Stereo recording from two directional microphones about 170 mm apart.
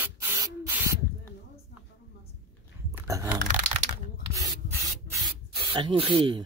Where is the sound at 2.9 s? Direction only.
15° right (ahead or behind).